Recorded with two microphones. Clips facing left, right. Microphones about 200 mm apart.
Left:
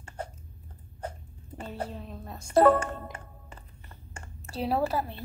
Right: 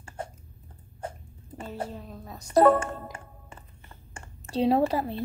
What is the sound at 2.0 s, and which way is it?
Speech, centre (ahead or behind).